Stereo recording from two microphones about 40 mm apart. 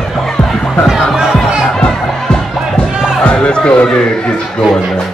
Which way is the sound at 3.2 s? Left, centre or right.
Left.